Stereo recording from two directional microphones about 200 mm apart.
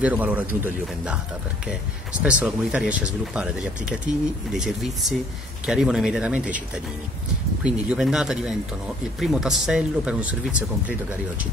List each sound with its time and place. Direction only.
0.0 s speech: 5° right (ahead or behind)
2.2 s speech: 5° right (ahead or behind)